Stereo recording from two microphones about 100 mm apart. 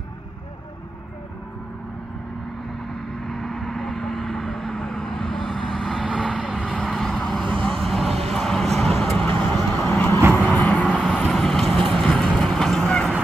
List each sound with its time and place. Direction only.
3.3 s vehicle: 5° left (ahead or behind)
9.9 s vehicle: 20° left (ahead or behind)
10.3 s vehicle: 10° left (ahead or behind)
11.0 s vehicle: 5° right (ahead or behind)